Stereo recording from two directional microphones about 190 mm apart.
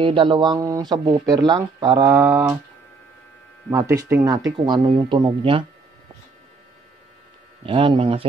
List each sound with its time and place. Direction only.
0.0 s speech: 25° right (ahead or behind)
3.7 s speech: 15° right (ahead or behind)
7.6 s speech: 25° right (ahead or behind)